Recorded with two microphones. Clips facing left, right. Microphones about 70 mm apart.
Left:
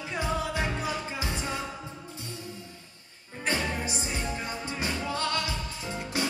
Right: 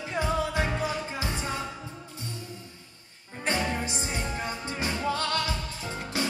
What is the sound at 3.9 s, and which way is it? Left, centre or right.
Music, right.